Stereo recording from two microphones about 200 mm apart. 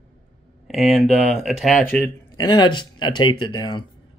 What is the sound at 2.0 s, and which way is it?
Speech, 20° left (ahead or behind).